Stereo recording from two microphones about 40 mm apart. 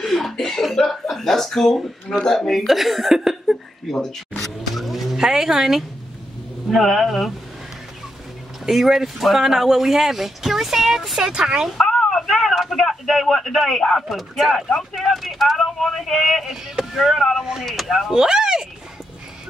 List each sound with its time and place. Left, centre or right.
0.0 s speech: centre
3.9 s vehicle: centre
5.2 s speech: centre
6.7 s speech: centre
8.6 s speech: centre
11.3 s speech: centre
11.8 s a sound: centre
12.1 s speech: centre
14.0 s speech: centre
16.4 s speech: centre
16.9 s speech: centre
18.1 s speech: centre